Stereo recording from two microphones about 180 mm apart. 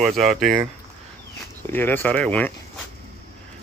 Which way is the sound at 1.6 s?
10° left (ahead or behind).